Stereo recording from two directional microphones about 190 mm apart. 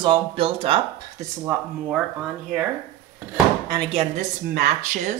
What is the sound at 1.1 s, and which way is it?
Speech, 15° right (ahead or behind).